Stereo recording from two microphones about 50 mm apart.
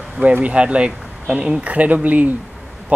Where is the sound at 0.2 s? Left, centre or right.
Right.